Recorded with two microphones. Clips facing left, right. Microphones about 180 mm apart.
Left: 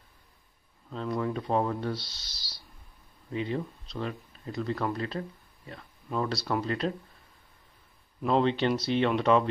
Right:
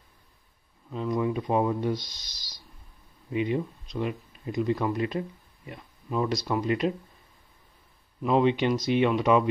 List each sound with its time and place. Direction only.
1.1 s speech: 10° right (ahead or behind)
8.3 s speech: 10° right (ahead or behind)